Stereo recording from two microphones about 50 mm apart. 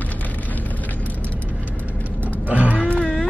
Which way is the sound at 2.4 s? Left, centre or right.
Right.